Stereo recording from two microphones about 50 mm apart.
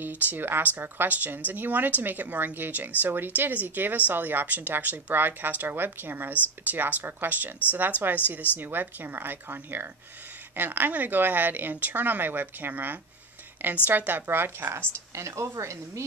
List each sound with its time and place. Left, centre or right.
0.0 s a woman's voice: right
15.1 s a woman's voice: right